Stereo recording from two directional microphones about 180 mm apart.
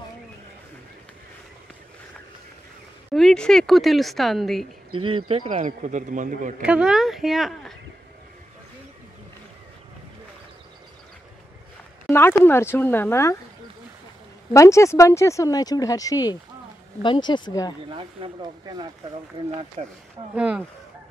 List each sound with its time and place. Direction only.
3.2 s a woman's voice: 5° left (ahead or behind)
4.9 s speech: 30° right (ahead or behind)
5.5 s a man's voice: 40° right (ahead or behind)
6.6 s a woman's voice: 5° right (ahead or behind)
12.1 s speech: 15° left (ahead or behind)
14.5 s speech: 15° left (ahead or behind)
17.8 s speech: 30° right (ahead or behind)
19.8 s speech: 40° right (ahead or behind)
20.3 s a woman's voice: 5° right (ahead or behind)